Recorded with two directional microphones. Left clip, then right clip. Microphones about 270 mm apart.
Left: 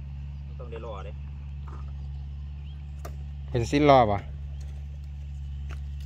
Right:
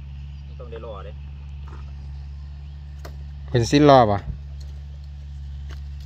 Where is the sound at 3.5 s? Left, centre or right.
Centre.